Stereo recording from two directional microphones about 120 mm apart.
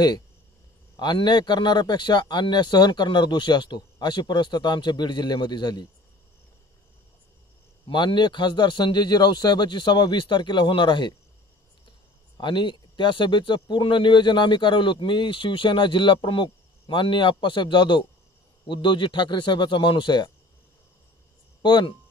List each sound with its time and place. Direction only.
0.9 s speech: 40° left (ahead or behind)
7.8 s speech: 40° left (ahead or behind)
12.4 s speech: 40° left (ahead or behind)
21.6 s speech: 40° left (ahead or behind)